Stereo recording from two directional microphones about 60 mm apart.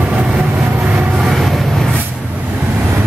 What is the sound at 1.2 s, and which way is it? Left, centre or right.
Vehicle, centre.